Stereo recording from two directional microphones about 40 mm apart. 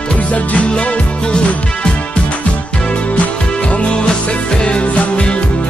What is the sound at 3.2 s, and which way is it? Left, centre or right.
Music, left.